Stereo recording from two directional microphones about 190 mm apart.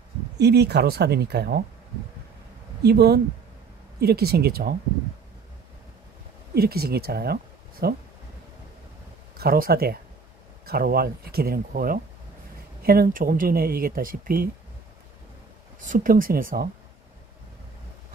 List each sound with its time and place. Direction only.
0.4 s speech: 60° right (ahead or behind)
2.8 s speech: 55° right (ahead or behind)
6.5 s speech: 55° right (ahead or behind)
9.4 s speech: 55° right (ahead or behind)
15.8 s speech: 45° right (ahead or behind)